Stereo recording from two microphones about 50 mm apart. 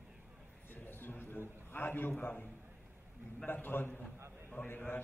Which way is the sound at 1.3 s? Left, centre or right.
Right.